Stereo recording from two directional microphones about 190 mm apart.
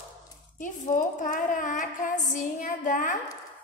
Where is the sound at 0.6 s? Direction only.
45° left (ahead or behind).